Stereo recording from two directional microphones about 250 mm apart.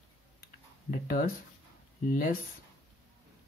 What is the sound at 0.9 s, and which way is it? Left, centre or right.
Speech, left.